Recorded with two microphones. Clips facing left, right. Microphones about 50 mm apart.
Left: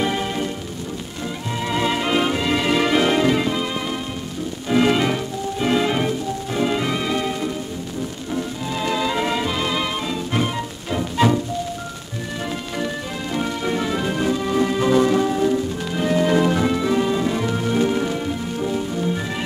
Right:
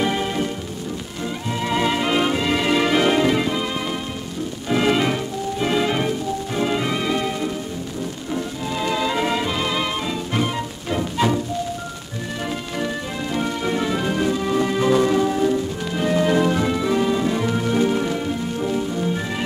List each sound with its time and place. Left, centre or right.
0.0 s music: centre
1.6 s music: centre
12.7 s music: centre